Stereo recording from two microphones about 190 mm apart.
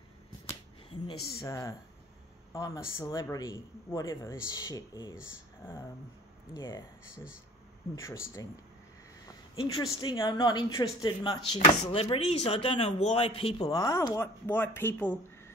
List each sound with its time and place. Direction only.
1.4 s speech: 15° left (ahead or behind)
6.5 s speech: 20° left (ahead or behind)
7.9 s speech: 15° left (ahead or behind)
9.6 s speech: 25° left (ahead or behind)